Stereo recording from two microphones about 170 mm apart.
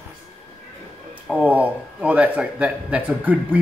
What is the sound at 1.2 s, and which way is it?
A man's voice, 10° right (ahead or behind).